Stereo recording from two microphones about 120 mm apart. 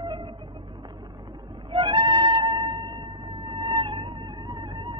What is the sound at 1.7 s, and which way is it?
Music, 45° right (ahead or behind).